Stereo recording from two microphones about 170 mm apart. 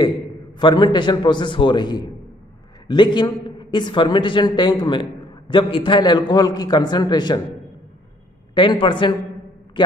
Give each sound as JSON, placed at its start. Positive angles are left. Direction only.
{"t": 0.6, "sound": "a man's voice", "side_deg": 25}
{"t": 8.5, "sound": "a man's voice", "side_deg": 30}